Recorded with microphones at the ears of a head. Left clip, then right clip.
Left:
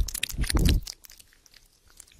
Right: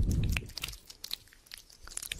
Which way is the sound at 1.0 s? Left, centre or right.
Right.